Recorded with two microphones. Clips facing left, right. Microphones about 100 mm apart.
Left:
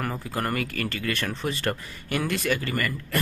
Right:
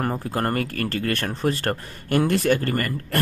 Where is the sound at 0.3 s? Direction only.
40° right (ahead or behind).